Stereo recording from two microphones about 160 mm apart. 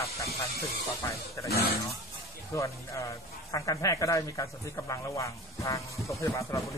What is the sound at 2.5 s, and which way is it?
A man's voice, 20° left (ahead or behind).